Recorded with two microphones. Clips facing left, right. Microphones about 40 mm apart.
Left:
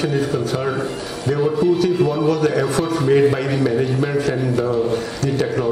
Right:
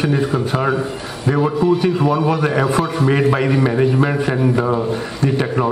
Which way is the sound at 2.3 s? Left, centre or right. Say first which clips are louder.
Right 1 dB; right.